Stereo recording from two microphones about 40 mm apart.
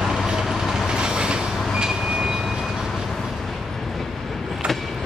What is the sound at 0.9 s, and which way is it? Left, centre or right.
Train, centre.